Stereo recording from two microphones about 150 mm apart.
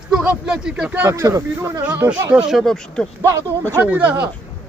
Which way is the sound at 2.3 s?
Centre (ahead or behind).